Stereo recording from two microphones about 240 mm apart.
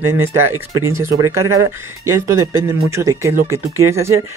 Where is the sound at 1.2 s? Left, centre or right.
Right.